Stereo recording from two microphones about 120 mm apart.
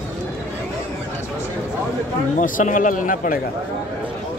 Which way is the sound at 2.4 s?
90° left.